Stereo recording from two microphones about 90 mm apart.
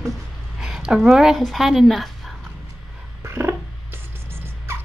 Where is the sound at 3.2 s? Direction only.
30° right (ahead or behind).